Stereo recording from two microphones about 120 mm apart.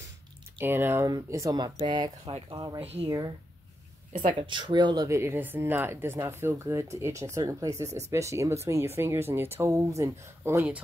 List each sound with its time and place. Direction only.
0.6 s speech: 20° right (ahead or behind); by 2.8 s 35° right (ahead or behind)
2.8 s speech: 60° right (ahead or behind)
4.3 s speech: 45° right (ahead or behind); by 10.7 s 25° right (ahead or behind)